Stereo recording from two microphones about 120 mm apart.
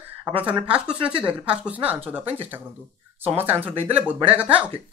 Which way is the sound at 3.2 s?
15° right (ahead or behind).